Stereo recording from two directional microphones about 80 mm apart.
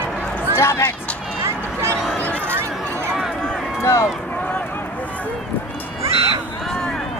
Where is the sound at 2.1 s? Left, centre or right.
Centre.